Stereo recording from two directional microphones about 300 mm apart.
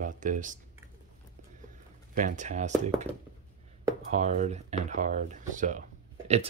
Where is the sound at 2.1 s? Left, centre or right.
Right.